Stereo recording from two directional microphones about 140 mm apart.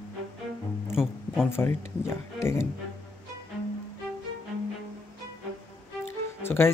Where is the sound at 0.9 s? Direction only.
5° right (ahead or behind).